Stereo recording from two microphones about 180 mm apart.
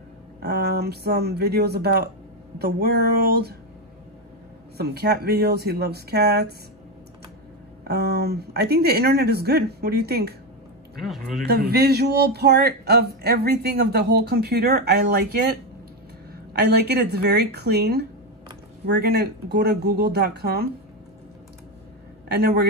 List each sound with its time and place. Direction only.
0.4 s speech: 60° right (ahead or behind)
4.7 s speech: 65° right (ahead or behind)
7.8 s speech: 65° right (ahead or behind)
11.0 s speech: centre (ahead or behind)
11.4 s speech: 60° right (ahead or behind)
16.5 s speech: 65° right (ahead or behind)
22.4 s speech: 60° right (ahead or behind)